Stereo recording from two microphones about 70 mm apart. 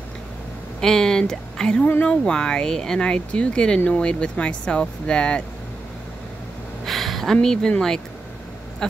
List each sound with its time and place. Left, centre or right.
0.7 s speech: centre
6.9 s a sound: centre
7.4 s speech: centre